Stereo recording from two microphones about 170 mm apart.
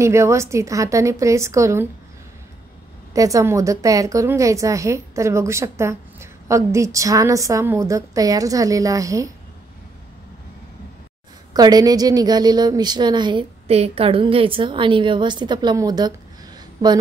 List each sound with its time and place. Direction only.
0.0 s a woman's voice: 15° right (ahead or behind)
3.1 s a woman's voice: 20° right (ahead or behind)
11.5 s a woman's voice: 25° right (ahead or behind)
16.5 s a sound: 25° right (ahead or behind)